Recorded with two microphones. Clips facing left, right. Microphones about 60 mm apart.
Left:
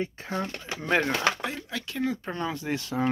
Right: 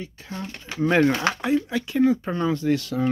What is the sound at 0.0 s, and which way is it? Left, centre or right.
Speech, left.